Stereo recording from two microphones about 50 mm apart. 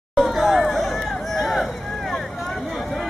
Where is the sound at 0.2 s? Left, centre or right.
Centre.